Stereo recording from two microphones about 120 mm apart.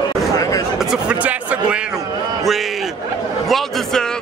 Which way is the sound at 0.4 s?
30° left (ahead or behind).